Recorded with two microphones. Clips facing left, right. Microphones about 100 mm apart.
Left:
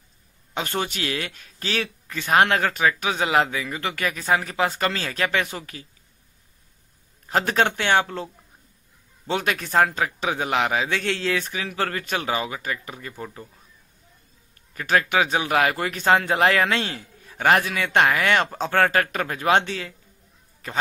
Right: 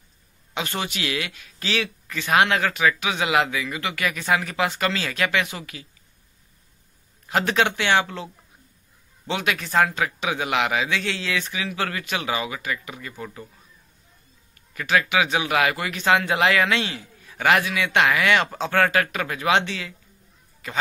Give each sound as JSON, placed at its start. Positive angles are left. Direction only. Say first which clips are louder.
{"t": 0.6, "sound": "a man's voice", "louder": "left 1 dB", "side_deg": 45}
{"t": 7.2, "sound": "speech", "louder": "even", "side_deg": 40}
{"t": 9.3, "sound": "a man's voice", "louder": "left 1 dB", "side_deg": 45}
{"t": 10.0, "sound": "a man's voice", "louder": "left 1 dB", "side_deg": 35}
{"t": 14.7, "sound": "a man's voice", "louder": "even", "side_deg": 40}